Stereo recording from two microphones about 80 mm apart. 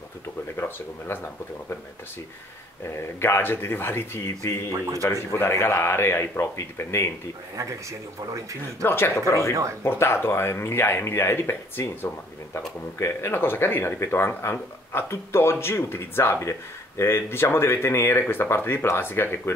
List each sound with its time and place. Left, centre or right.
0.6 s speech: left
2.8 s speech: left
4.8 s speech: right
5.3 s speech: left
8.3 s speech: right
8.8 s speech: left
9.5 s speech: right
9.8 s speech: left